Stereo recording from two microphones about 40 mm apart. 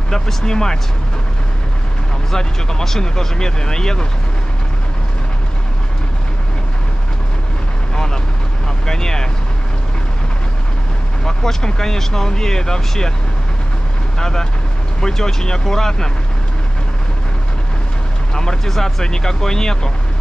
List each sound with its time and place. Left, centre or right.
0.1 s speech: centre
2.3 s speech: centre
7.9 s vehicle: centre
8.8 s speech: centre
11.2 s speech: centre
14.1 s speech: centre
18.3 s speech: centre